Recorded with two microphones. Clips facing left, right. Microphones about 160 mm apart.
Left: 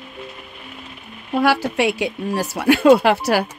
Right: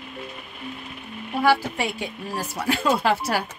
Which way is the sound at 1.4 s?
75° left (ahead or behind).